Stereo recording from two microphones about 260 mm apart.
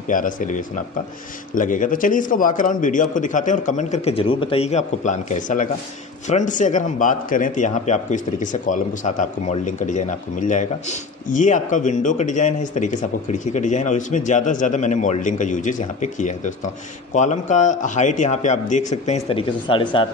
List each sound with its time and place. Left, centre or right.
0.1 s a man's voice: left